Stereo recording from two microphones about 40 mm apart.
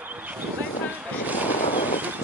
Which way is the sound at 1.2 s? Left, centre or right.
Right.